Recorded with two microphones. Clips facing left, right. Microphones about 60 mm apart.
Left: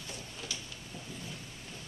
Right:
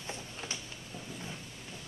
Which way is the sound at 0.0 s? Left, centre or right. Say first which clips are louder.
Right 2 dB; right.